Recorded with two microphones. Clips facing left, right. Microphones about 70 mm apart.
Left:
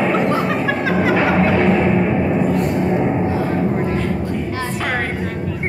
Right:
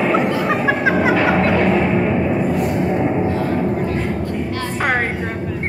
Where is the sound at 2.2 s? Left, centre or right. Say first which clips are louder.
Left 1 dB; centre.